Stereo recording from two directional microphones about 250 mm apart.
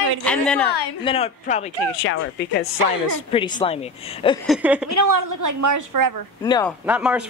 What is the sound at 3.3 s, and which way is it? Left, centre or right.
Speech, centre.